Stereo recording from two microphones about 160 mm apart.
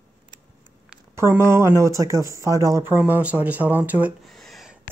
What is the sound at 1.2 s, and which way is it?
Speech, 15° right (ahead or behind).